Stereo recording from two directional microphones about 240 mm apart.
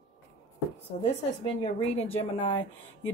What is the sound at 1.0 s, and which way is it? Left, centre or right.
A woman's voice, left.